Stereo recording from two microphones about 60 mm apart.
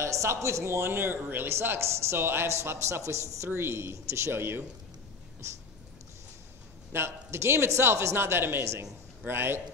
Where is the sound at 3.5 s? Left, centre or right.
Right.